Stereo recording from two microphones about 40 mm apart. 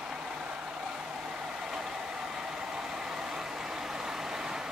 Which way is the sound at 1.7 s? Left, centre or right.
Centre.